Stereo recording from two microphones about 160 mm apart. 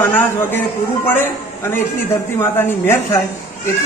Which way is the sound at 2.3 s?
15° left (ahead or behind).